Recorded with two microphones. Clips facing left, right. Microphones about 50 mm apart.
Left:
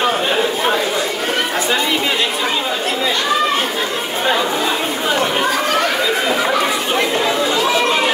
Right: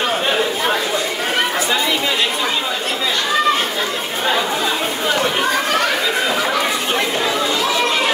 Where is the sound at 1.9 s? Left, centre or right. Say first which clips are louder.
Left 1 dB; centre.